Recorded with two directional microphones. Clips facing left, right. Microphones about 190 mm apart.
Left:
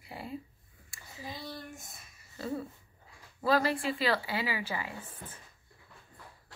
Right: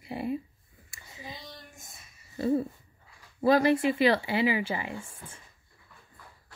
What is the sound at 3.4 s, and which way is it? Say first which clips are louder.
Speech: right 6 dB; 20° right (ahead or behind).